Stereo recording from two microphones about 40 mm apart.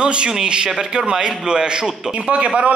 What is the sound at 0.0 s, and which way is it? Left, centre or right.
A man's voice, right.